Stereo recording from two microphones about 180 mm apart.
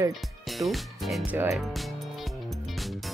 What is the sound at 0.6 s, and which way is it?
Speech, centre (ahead or behind).